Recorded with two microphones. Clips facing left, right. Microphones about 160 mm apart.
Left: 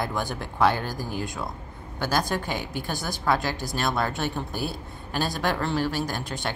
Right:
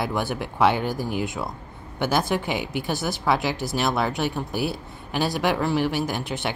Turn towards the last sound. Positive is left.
turn(degrees=-15)  # may be behind; listen again after turning